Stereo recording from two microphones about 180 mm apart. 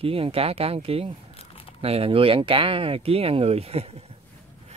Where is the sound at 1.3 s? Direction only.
30° left (ahead or behind).